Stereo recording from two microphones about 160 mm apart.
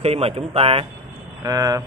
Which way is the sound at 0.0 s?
40° right (ahead or behind).